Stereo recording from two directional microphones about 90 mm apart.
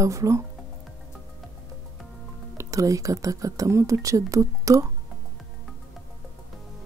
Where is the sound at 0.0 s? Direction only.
35° right (ahead or behind).